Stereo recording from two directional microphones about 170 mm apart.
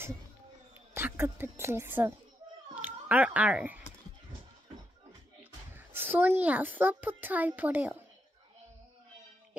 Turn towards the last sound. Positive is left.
turn(degrees=-10)  # may be behind; listen again after turning